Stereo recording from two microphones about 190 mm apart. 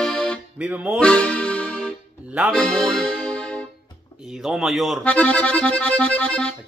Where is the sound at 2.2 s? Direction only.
5° right (ahead or behind).